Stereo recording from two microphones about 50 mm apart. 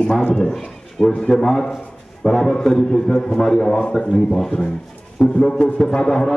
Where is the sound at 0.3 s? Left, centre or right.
Centre.